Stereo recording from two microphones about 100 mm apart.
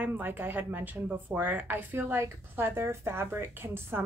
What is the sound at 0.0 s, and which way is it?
Speech, 20° right (ahead or behind).